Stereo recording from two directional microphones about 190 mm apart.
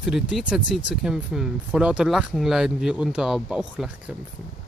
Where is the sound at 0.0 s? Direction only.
5° right (ahead or behind).